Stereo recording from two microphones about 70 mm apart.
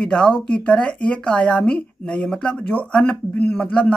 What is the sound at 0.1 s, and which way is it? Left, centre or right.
A woman's voice, centre.